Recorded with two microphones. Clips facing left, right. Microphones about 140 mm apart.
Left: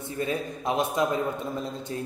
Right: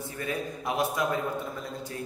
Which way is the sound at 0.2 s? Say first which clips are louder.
Left 4 dB; 20° left (ahead or behind).